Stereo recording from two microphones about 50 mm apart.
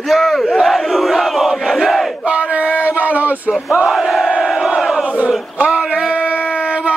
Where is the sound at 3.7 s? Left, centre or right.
Centre.